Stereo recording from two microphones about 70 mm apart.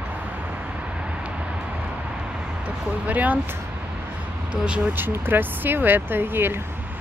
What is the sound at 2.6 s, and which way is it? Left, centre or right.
Speech, right.